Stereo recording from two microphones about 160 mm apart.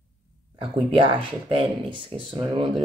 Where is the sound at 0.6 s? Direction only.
35° right (ahead or behind).